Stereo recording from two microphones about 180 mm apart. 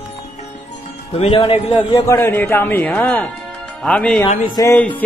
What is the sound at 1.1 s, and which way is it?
Speech, 30° left (ahead or behind).